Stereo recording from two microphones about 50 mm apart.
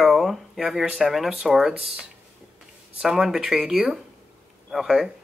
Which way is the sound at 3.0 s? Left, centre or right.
Centre.